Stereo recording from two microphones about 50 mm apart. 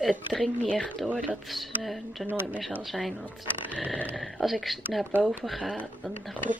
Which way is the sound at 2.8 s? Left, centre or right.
Centre.